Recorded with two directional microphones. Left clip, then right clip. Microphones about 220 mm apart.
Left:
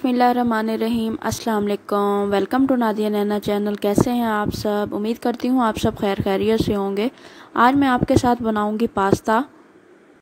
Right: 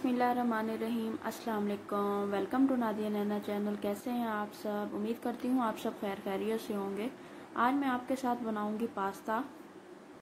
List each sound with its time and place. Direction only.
0.0 s a woman's voice: 45° left (ahead or behind)